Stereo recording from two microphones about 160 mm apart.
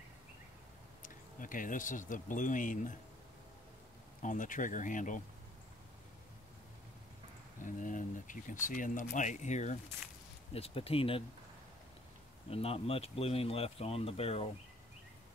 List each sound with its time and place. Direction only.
1.0 s speech: 55° left (ahead or behind)
4.2 s speech: 55° left (ahead or behind)
7.6 s speech: 55° left (ahead or behind); by 11.2 s 35° left (ahead or behind)
12.4 s speech: 40° left (ahead or behind)